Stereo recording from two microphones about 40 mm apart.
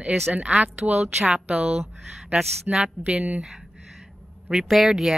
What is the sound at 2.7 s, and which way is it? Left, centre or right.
Speech, right.